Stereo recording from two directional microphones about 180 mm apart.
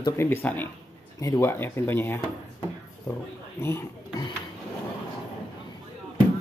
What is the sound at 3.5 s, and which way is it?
Speech, 15° left (ahead or behind).